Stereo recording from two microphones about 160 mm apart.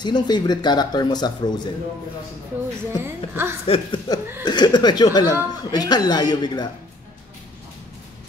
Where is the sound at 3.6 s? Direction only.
35° left (ahead or behind).